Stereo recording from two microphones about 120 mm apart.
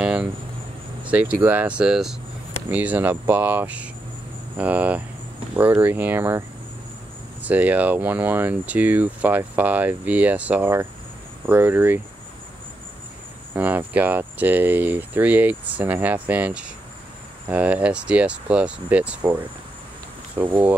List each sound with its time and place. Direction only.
0.0 s cricket: 10° right (ahead or behind)
1.0 s speech: 10° right (ahead or behind)
7.4 s speech: 15° right (ahead or behind)
13.5 s speech: 15° right (ahead or behind)